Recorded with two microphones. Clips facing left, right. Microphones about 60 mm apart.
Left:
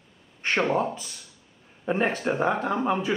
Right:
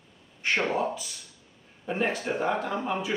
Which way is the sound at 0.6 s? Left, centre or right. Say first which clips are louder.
Left 3 dB; left.